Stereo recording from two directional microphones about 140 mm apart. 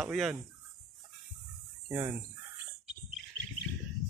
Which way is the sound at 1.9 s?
15° right (ahead or behind).